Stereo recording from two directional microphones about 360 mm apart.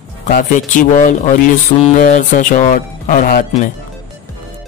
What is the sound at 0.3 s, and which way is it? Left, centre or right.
Speech, left.